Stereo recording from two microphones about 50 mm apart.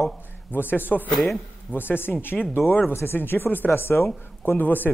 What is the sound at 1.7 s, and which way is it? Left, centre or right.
Speech, left.